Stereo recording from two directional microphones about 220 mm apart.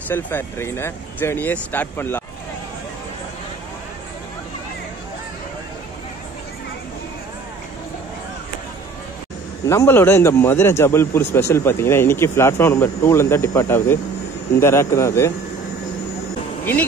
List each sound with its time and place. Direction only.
0.1 s a man's voice: 10° left (ahead or behind)
9.7 s a man's voice: 10° left (ahead or behind)